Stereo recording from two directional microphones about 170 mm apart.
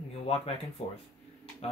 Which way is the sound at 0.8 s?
35° left (ahead or behind).